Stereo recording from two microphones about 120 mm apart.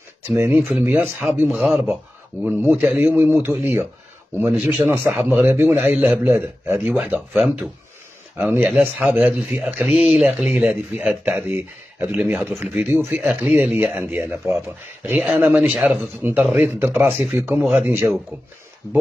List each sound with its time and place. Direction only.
0.6 s speech: 10° right (ahead or behind)
1.6 s speech: centre (ahead or behind)
2.4 s speech: 15° right (ahead or behind)
7.2 s speech: 5° right (ahead or behind)
13.5 s speech: 5° right (ahead or behind)